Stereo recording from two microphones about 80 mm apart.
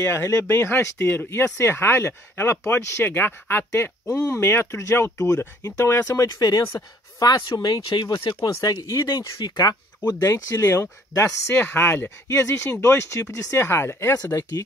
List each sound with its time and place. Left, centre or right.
0.1 s speech: left
8.8 s speech: left
10.8 s speech: left
14.1 s speech: left